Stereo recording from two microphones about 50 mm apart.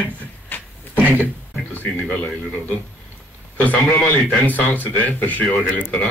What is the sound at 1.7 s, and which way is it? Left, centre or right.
A man's voice, left.